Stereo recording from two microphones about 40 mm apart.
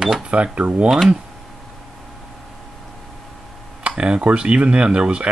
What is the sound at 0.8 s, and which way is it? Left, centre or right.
Speech, centre.